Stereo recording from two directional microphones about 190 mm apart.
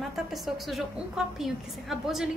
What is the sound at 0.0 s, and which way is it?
A woman's voice, centre (ahead or behind).